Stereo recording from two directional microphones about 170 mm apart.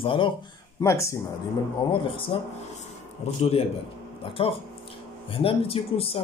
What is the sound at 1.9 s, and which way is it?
Speech, 30° left (ahead or behind).